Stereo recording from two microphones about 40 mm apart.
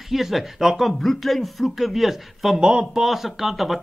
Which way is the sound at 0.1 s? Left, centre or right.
Centre.